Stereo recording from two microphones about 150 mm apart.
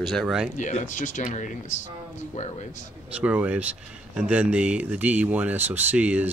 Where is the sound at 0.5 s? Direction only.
55° left (ahead or behind).